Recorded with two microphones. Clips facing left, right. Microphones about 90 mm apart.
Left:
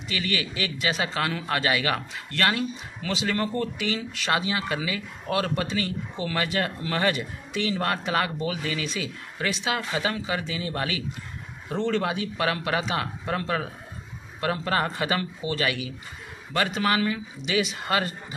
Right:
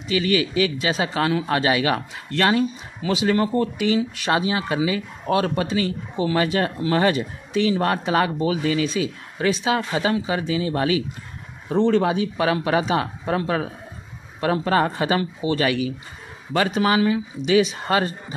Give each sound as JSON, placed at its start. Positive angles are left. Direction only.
{"t": 0.1, "sound": "speech", "side_deg": -25}
{"t": 16.5, "sound": "speech", "side_deg": -20}